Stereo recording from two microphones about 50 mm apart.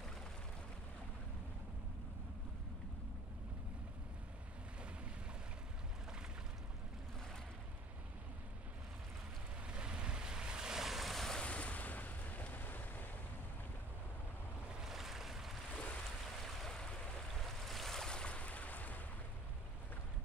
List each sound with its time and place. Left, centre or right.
9.7 s waves: centre
11.4 s a sound: left
14.8 s waves: centre
15.7 s a sound: left
16.4 s stream: centre
17.5 s waves: centre; by 19.0 s left